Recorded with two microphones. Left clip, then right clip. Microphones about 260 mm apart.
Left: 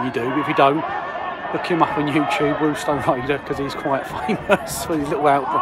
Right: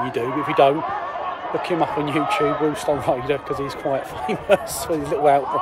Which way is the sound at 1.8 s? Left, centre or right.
Centre.